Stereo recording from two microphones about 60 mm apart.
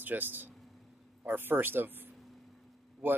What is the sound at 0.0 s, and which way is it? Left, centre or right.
Speech, right.